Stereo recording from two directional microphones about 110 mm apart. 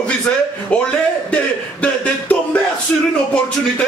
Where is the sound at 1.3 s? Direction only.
10° left (ahead or behind).